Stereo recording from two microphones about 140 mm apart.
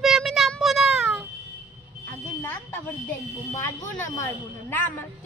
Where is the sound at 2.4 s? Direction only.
15° left (ahead or behind).